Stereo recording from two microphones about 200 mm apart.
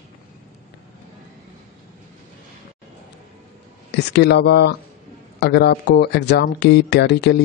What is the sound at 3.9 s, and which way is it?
A man's voice, 55° left (ahead or behind).